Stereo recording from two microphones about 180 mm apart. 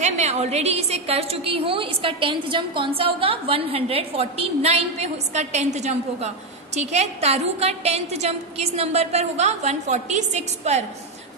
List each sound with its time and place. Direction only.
0.0 s a woman's voice: 40° right (ahead or behind)